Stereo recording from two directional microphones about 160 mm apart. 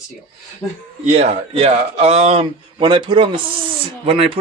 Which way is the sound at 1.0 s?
45° right (ahead or behind).